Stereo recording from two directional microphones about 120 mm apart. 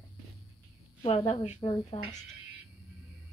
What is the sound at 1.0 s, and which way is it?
Speech, 55° left (ahead or behind).